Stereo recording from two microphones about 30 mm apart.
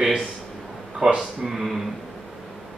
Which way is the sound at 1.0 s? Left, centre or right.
Right.